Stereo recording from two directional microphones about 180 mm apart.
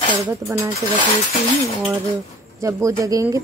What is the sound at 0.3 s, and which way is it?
Speech, 15° right (ahead or behind).